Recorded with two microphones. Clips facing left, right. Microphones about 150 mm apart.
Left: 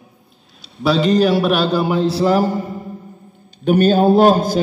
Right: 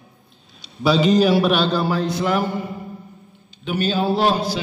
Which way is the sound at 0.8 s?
Centre (ahead or behind).